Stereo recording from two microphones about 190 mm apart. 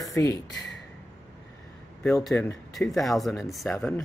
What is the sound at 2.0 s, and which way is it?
Speech, centre (ahead or behind).